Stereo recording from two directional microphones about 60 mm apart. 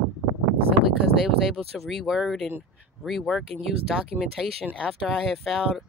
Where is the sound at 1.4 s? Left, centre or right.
Centre.